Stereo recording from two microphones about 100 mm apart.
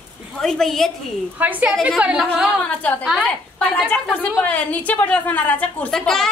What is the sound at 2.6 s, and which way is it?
A woman's voice, 15° left (ahead or behind).